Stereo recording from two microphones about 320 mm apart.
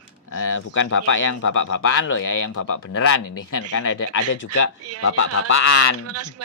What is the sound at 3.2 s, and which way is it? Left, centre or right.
Speech, left.